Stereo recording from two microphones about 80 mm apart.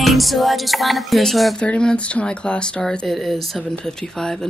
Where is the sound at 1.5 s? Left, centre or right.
Centre.